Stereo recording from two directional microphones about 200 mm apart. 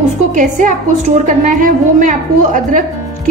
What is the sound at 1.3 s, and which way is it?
A woman's voice, 40° right (ahead or behind).